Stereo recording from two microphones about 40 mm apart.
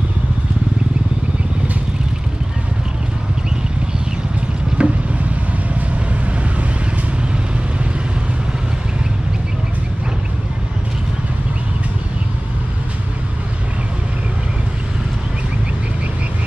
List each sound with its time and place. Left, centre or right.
4.8 s vehicle: right